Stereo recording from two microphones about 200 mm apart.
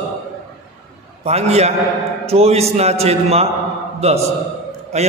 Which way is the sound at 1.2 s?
30° right (ahead or behind).